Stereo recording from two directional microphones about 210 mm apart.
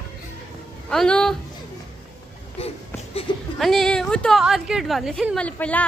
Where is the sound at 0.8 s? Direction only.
5° left (ahead or behind).